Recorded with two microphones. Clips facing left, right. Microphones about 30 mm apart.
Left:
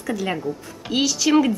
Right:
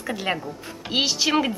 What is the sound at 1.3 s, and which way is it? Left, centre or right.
Speech, centre.